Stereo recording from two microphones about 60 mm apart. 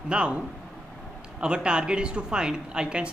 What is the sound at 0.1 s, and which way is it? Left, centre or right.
Speech, centre.